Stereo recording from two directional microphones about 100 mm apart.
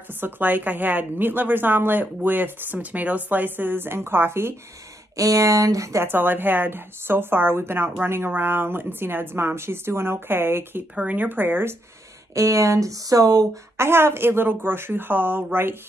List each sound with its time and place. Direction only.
0.2 s a woman's voice: 15° right (ahead or behind)
6.0 s a woman's voice: 20° right (ahead or behind)
12.4 s speech: 30° right (ahead or behind)
13.7 s a woman's voice: 25° right (ahead or behind)